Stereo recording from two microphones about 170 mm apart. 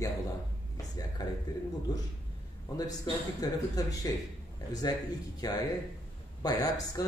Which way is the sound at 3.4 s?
20° left (ahead or behind).